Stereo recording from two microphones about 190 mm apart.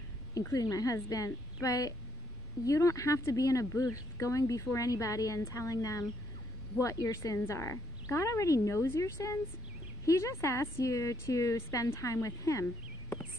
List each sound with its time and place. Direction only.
0.3 s speech: 20° left (ahead or behind)